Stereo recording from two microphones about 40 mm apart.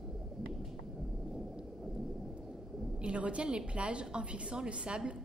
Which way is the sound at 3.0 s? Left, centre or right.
Right.